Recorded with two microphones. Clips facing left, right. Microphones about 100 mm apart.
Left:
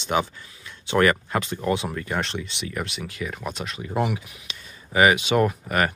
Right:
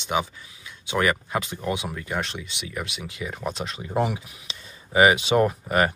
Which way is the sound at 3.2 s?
20° right (ahead or behind).